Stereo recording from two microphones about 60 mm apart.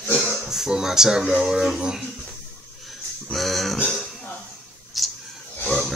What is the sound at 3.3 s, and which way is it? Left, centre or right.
Speech, centre.